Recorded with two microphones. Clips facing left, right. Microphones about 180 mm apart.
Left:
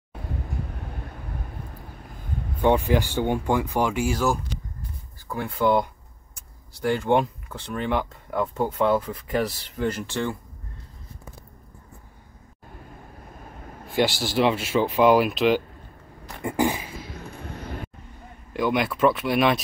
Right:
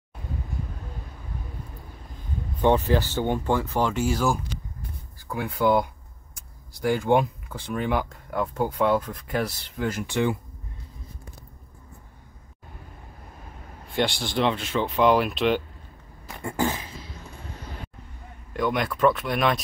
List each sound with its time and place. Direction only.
2.5 s speech: 10° left (ahead or behind)
5.3 s speech: 5° right (ahead or behind)
9.0 s speech: 5° left (ahead or behind)
9.8 s speech: 10° right (ahead or behind)
13.8 s speech: 5° left (ahead or behind)
16.4 s a sound: 15° left (ahead or behind)
18.5 s speech: 5° left (ahead or behind)